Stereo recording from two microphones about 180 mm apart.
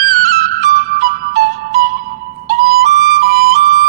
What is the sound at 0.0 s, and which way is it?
Music, 55° right (ahead or behind).